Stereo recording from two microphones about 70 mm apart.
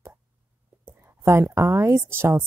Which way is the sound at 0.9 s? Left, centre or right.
Right.